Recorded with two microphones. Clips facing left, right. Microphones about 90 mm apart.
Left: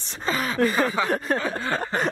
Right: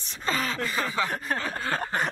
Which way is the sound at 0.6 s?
50° left (ahead or behind).